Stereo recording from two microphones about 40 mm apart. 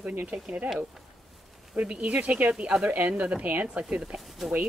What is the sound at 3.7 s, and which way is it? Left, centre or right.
Speech, right.